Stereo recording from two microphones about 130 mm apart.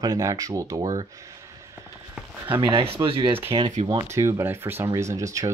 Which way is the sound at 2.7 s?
45° right (ahead or behind).